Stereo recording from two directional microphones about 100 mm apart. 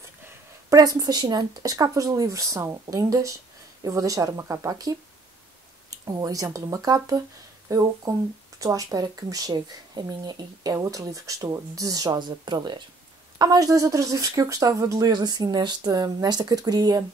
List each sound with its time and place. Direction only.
0.7 s speech: 40° right (ahead or behind)